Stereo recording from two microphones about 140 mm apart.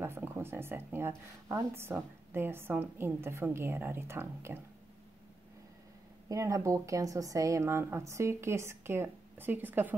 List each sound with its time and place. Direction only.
0.0 s speech: 15° right (ahead or behind)
6.2 s a woman's voice: 25° right (ahead or behind)